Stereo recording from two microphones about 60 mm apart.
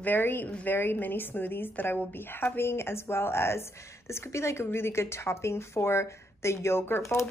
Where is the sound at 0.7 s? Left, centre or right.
Left.